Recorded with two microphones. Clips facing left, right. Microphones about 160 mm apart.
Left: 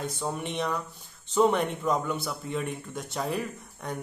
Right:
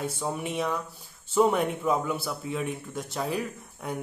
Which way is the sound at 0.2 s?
5° right (ahead or behind).